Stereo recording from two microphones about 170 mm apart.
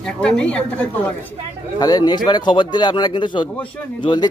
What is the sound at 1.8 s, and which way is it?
Speech, 25° left (ahead or behind).